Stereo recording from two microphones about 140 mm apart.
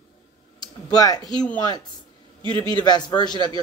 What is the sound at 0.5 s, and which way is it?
Speech, 30° left (ahead or behind).